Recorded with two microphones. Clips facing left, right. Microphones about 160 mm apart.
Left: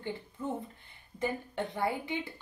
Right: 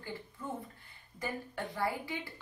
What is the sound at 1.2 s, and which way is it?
A woman's voice, 25° left (ahead or behind).